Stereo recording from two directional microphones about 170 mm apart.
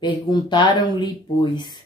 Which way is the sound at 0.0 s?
25° left (ahead or behind).